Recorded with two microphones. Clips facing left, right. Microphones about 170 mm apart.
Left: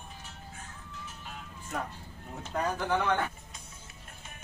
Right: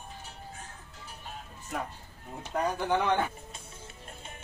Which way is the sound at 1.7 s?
5° right (ahead or behind).